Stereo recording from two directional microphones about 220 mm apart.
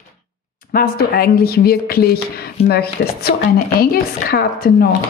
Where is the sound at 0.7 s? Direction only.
40° left (ahead or behind).